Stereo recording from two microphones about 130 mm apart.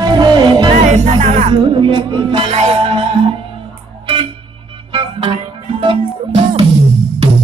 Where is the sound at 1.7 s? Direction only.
40° right (ahead or behind).